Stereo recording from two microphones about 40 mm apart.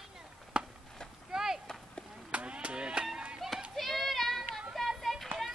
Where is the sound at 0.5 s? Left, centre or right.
Right.